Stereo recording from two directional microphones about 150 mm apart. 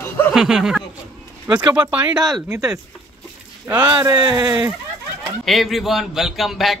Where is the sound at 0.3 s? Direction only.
5° right (ahead or behind).